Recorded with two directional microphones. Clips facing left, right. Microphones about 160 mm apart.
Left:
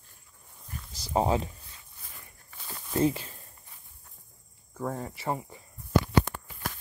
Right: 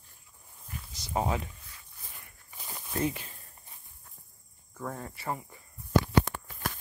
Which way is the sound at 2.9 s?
30° left (ahead or behind).